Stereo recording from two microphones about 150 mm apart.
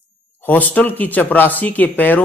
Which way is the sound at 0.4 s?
10° left (ahead or behind).